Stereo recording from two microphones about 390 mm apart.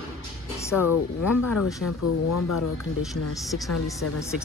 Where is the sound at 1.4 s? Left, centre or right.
Left.